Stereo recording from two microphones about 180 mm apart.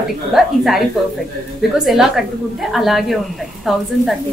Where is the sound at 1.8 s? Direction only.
Centre (ahead or behind).